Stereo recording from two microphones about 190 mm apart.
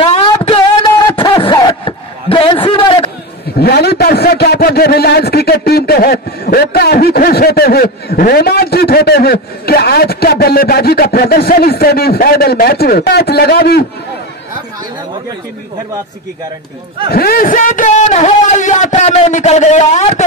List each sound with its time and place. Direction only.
0.0 s a sound: 30° left (ahead or behind)
3.5 s a man's voice: 55° left (ahead or behind)
17.1 s a man's voice: 50° left (ahead or behind); by 20.2 s 35° left (ahead or behind)